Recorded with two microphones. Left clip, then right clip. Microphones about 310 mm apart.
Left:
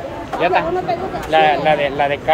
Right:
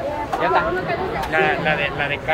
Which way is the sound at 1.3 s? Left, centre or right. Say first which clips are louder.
Left 7 dB; left.